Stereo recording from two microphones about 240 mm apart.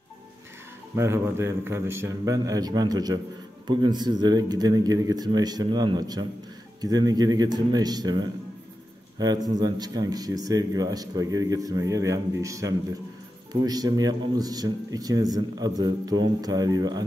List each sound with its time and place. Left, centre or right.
0.9 s speech: centre